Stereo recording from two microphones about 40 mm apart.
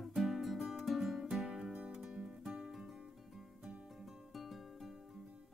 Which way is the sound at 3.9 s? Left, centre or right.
Centre.